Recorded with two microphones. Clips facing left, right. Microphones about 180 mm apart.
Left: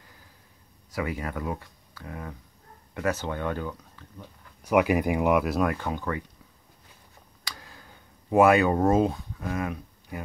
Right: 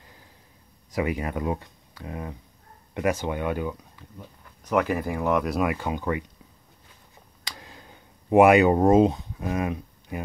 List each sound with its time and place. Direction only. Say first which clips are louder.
0.9 s speech: right 4 dB; 20° right (ahead or behind)
4.6 s speech: left 2 dB; 10° left (ahead or behind)
5.4 s speech: even; centre (ahead or behind)
5.9 s speech: right 3 dB; 15° right (ahead or behind)
7.4 s a sound: right 2 dB; 20° right (ahead or behind)